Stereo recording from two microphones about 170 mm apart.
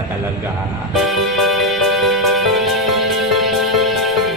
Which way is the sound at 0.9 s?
Centre (ahead or behind).